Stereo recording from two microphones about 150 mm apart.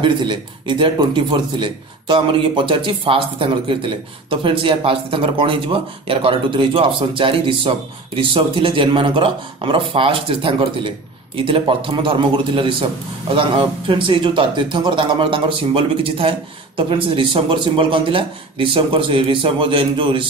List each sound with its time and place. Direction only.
0.0 s speech: 35° right (ahead or behind)